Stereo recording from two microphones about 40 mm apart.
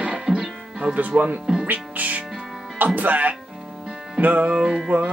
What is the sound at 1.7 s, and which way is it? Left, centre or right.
Music, right.